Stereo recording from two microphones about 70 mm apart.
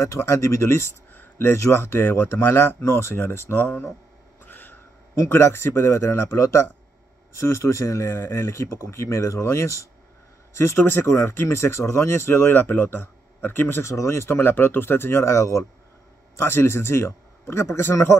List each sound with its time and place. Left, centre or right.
0.0 s speech: left
4.5 s a sound: left
5.3 s speech: left
13.8 s a man's voice: left